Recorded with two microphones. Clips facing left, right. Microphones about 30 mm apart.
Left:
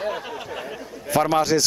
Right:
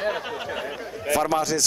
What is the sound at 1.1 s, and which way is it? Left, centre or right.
Speech, centre.